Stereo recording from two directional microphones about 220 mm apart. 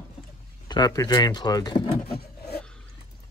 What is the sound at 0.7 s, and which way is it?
Speech, 20° left (ahead or behind).